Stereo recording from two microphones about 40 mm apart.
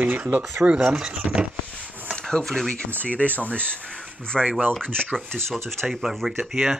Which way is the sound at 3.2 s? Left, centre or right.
Right.